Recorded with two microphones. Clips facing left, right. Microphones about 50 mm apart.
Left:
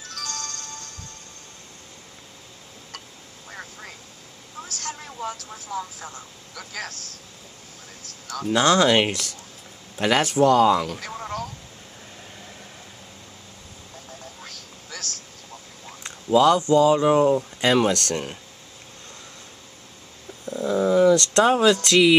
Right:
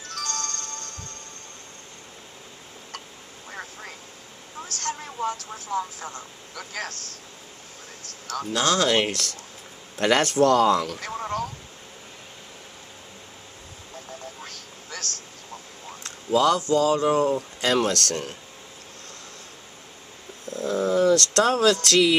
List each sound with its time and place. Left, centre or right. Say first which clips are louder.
0.1 s music: right 3 dB; centre
3.4 s vehicle: right 1 dB; centre
5.9 s speech: right 2 dB; centre
6.5 s speech: right 1 dB; centre
8.5 s speech: left 4 dB; left; by 11.4 s centre
14.4 s vehicle: right 1 dB; centre
16.0 s speech: left 3 dB; centre
20.4 s a sound: left 3 dB; centre
21.8 s speech: left 3 dB; centre